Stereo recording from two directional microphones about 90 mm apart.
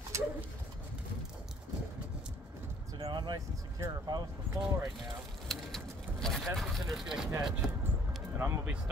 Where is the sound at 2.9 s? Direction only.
60° right (ahead or behind).